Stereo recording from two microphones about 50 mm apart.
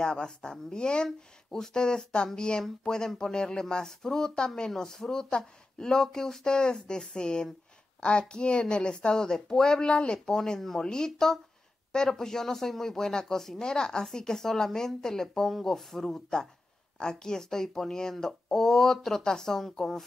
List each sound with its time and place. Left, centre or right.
0.0 s a woman's voice: centre